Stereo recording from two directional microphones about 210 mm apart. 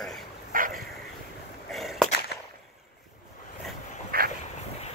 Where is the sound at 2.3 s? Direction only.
50° left (ahead or behind).